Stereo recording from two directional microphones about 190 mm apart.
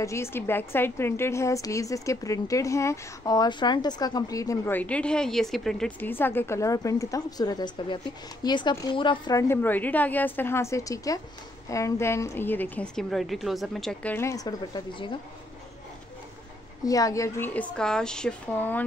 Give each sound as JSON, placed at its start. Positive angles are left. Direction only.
{"t": 0.0, "sound": "a woman's voice", "side_deg": 15}
{"t": 16.8, "sound": "a woman's voice", "side_deg": 20}